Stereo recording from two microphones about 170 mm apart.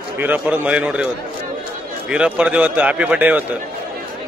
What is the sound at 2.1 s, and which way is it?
A man's voice, 5° right (ahead or behind).